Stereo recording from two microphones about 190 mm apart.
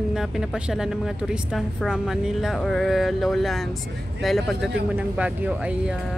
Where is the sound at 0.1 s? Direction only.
5° right (ahead or behind).